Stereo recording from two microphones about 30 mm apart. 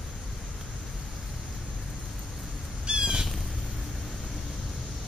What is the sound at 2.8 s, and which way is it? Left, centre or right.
Bird, right.